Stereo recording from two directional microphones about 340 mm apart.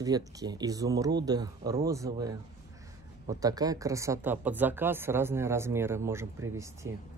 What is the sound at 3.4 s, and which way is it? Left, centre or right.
Speech, centre.